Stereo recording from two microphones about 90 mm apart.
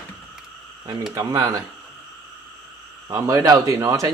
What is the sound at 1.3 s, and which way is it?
Speech, 40° right (ahead or behind).